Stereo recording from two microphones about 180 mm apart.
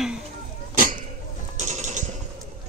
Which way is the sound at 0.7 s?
50° right (ahead or behind).